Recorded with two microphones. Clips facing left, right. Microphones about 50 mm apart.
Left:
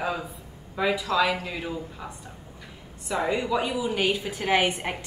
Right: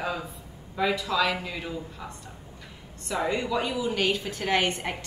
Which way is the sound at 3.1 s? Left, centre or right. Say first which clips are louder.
Left 2 dB; centre.